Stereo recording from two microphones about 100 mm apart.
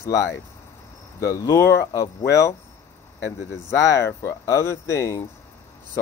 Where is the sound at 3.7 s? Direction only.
30° left (ahead or behind).